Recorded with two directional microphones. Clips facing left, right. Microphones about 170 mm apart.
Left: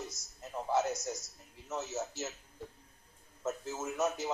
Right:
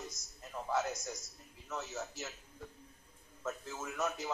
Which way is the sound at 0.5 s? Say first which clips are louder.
Left 4 dB; 20° left (ahead or behind).